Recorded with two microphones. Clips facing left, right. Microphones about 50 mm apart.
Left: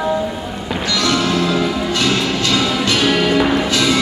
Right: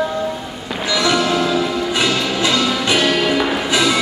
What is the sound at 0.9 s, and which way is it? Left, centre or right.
Music, centre.